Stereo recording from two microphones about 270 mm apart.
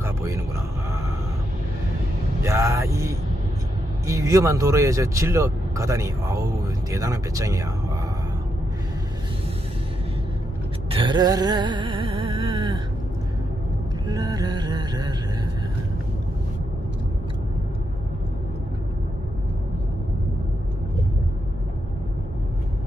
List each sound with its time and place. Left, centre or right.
0.0 s a sound: centre
2.4 s vehicle: centre
4.0 s speech: centre
10.9 s music: centre
14.0 s music: centre